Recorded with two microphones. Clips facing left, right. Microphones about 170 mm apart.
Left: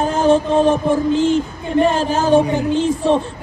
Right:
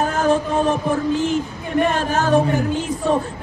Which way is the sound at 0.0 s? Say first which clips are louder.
Left 4 dB; 30° left (ahead or behind).